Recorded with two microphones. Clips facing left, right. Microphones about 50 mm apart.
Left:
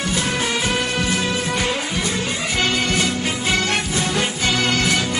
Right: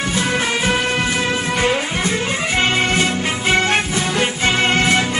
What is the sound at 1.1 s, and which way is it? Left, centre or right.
Music, right.